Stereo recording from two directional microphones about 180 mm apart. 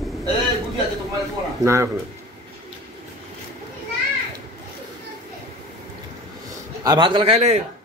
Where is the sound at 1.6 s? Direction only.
15° right (ahead or behind).